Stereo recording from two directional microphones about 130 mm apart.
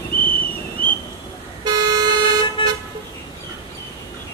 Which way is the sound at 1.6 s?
30° right (ahead or behind).